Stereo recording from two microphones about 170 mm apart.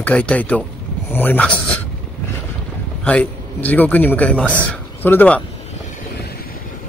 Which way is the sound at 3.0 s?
5° left (ahead or behind).